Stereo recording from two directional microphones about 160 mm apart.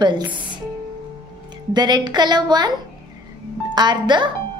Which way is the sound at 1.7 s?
25° right (ahead or behind).